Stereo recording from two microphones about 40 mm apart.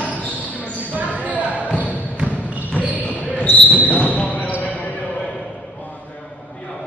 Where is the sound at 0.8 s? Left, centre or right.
Right.